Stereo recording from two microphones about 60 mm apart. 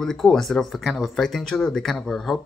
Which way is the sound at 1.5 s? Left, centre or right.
Centre.